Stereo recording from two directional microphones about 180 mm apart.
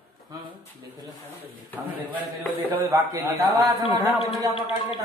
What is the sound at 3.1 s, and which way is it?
Speech, 20° right (ahead or behind).